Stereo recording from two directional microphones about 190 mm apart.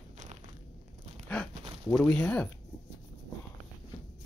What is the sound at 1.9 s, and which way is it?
Speech, 10° left (ahead or behind).